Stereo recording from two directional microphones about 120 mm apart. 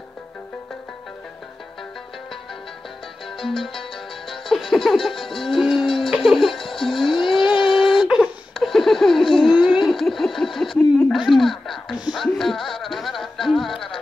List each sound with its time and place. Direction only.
4.3 s music: centre (ahead or behind)
5.3 s music: 45° left (ahead or behind)
5.6 s music: centre (ahead or behind)
6.6 s music: 45° left (ahead or behind)
7.8 s a sound: 45° left (ahead or behind)
8.1 s laughter: 5° right (ahead or behind)
9.4 s a sound: 40° left (ahead or behind)
9.8 s a sound: 5° left (ahead or behind)
11.1 s speech: centre (ahead or behind)
12.2 s music: centre (ahead or behind)